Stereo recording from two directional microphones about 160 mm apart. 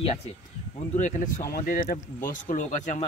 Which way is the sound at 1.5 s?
60° left (ahead or behind).